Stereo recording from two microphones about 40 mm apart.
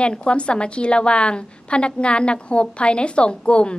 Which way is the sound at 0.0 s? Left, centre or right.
Left.